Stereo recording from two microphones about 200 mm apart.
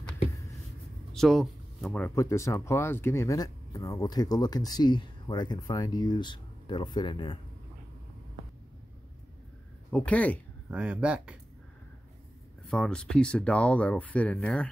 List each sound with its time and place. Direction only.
1.1 s speech: centre (ahead or behind); by 7.3 s 25° left (ahead or behind)
9.9 s speech: 5° left (ahead or behind)
10.7 s speech: 5° right (ahead or behind)
12.6 s speech: 5° left (ahead or behind)